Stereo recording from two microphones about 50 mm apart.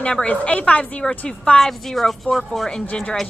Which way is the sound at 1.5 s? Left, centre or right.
Centre.